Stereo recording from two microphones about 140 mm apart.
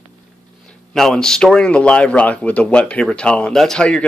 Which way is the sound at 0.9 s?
5° left (ahead or behind).